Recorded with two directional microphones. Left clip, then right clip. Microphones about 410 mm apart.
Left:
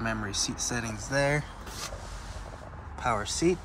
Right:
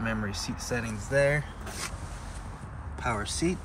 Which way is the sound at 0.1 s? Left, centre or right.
Left.